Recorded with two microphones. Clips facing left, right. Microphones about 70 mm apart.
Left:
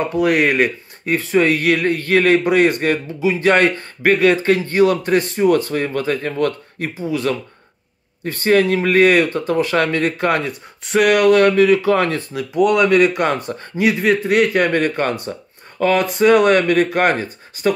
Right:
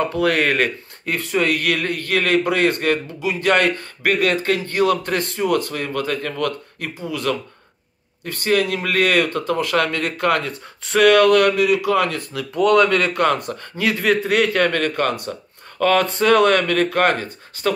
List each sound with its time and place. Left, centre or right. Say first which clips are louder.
0.0 s a man's voice: left 2 dB; centre
10.9 s speech: even; centre
11.3 s speech: left 3 dB; left
12.4 s speech: even; centre; by 13.8 s left
13.8 s speech: left 2 dB; centre; by 15.3 s left
15.8 s speech: left 2 dB; centre